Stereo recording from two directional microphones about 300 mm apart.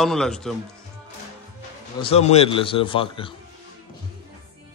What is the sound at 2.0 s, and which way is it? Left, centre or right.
A man's voice, left.